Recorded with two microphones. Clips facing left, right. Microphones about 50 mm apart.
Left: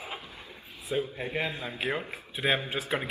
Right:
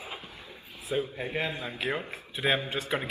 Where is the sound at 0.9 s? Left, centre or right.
Centre.